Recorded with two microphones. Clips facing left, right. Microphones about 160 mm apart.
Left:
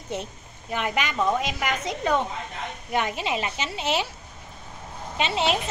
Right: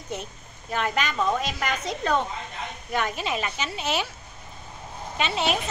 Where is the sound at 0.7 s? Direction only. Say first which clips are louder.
Even; 15° left (ahead or behind).